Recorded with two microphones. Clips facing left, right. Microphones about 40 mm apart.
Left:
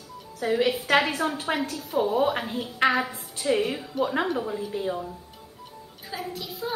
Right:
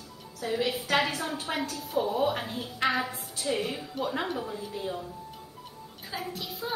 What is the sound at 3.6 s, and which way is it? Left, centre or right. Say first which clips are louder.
A woman's voice: left 5 dB; centre.